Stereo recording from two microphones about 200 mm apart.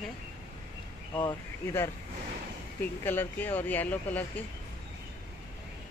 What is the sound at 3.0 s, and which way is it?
Speech, 10° left (ahead or behind).